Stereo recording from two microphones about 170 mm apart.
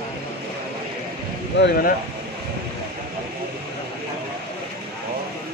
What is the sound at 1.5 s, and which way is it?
Speech, 70° left (ahead or behind).